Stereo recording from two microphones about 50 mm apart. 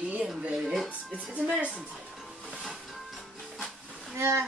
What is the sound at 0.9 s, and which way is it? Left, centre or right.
Speech, right.